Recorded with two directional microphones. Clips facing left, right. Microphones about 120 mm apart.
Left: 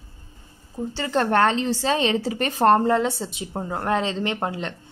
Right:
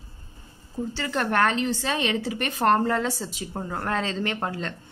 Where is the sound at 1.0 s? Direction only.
30° left (ahead or behind).